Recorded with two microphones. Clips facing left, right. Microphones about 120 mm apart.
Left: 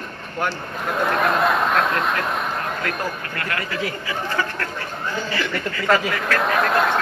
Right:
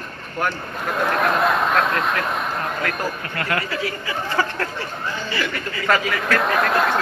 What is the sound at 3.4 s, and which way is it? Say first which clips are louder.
Speech: right 4 dB; 30° right (ahead or behind).